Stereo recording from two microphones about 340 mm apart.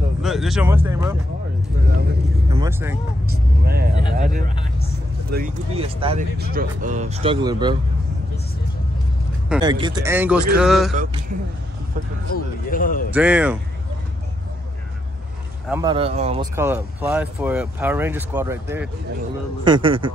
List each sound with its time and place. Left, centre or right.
0.2 s speech: centre
2.5 s speech: centre
3.3 s speech: right
6.3 s speech: right
9.5 s speech: centre
12.4 s speech: left
13.1 s speech: centre
15.7 s speech: centre
16.5 s speech: centre